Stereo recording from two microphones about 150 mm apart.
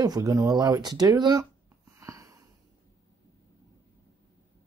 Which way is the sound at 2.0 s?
20° right (ahead or behind).